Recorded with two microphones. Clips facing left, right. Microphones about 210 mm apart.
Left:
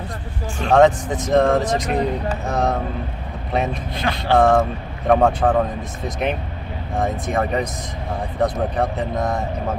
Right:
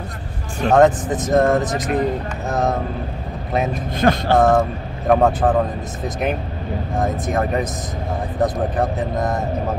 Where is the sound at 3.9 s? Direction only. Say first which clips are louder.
Right 4 dB; 45° right (ahead or behind).